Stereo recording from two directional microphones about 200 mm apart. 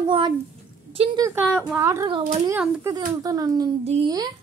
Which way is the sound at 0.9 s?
30° right (ahead or behind).